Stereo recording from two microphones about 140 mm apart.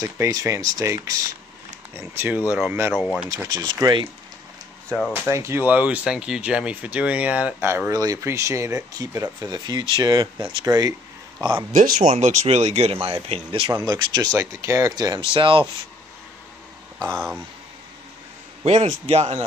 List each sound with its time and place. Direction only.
0.0 s speech: 25° right (ahead or behind)
2.9 s speech: centre (ahead or behind)
3.4 s speech: 30° right (ahead or behind)
4.8 s speech: 5° left (ahead or behind)
5.1 s speech: 15° right (ahead or behind)
11.7 s speech: 70° right (ahead or behind); by 13.7 s 40° right (ahead or behind)
13.7 s speech: 25° right (ahead or behind)
18.7 s speech: 55° right (ahead or behind)